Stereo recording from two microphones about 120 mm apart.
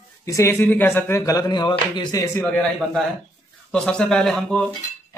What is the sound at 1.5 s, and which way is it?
Speech, 40° left (ahead or behind).